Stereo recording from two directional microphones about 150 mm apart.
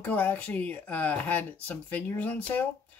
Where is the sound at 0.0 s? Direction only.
10° left (ahead or behind).